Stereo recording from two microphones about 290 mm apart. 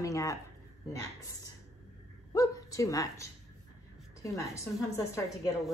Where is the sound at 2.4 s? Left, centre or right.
Centre.